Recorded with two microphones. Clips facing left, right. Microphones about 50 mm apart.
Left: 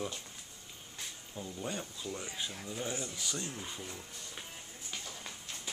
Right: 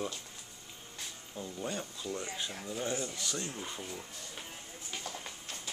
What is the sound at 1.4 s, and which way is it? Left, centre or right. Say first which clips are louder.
Speech: right 1 dB; centre.